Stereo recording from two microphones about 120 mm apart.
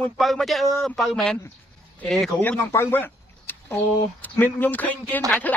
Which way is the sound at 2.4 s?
20° left (ahead or behind).